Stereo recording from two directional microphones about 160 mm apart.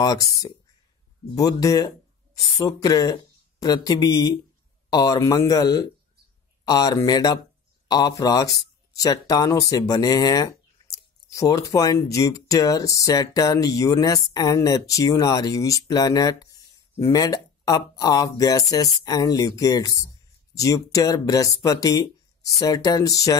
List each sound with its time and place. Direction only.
0.0 s speech: 20° left (ahead or behind)